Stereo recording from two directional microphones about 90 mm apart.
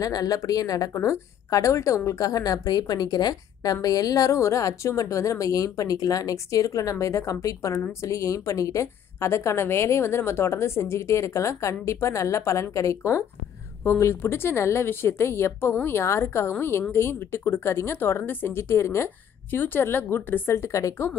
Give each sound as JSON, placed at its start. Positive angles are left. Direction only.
{"t": 0.0, "sound": "a woman's voice", "side_deg": 45}
{"t": 19.0, "sound": "speech", "side_deg": 20}